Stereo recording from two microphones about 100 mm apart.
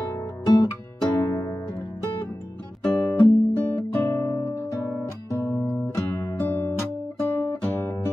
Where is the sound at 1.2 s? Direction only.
35° left (ahead or behind).